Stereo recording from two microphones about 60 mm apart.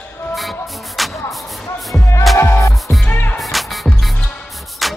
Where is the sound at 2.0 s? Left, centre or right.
Left.